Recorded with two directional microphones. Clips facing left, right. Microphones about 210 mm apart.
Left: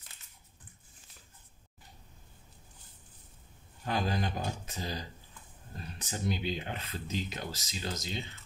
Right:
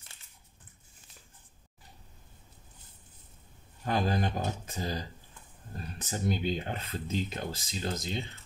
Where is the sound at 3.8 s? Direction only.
50° right (ahead or behind).